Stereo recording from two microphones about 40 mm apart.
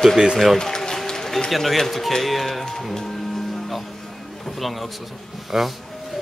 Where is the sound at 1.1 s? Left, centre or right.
Centre.